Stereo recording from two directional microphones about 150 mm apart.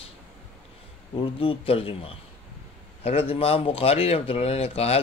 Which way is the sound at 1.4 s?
40° left (ahead or behind).